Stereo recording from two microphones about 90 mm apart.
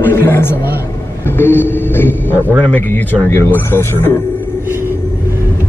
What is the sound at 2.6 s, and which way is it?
Speech, 15° left (ahead or behind).